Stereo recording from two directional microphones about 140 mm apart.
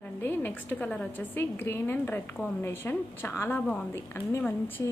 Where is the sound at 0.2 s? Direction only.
15° left (ahead or behind).